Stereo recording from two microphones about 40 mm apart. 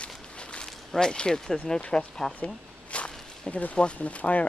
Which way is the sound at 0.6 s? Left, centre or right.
Centre.